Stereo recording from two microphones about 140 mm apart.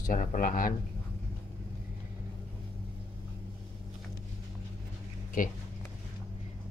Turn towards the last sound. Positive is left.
turn(degrees=70)  # may be behind; listen again after turning